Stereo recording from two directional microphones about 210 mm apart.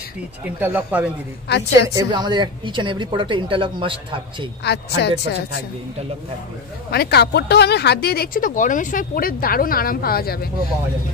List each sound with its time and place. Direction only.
0.6 s speech: 10° right (ahead or behind)
2.0 s a woman's voice: 20° right (ahead or behind)
4.6 s speech: 55° left (ahead or behind)
6.9 s speech: 50° left (ahead or behind)